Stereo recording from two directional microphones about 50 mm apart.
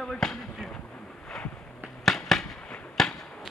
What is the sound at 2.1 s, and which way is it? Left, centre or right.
Fireworks, centre.